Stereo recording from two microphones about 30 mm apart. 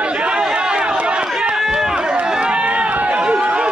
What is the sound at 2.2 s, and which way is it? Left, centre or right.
Run, right.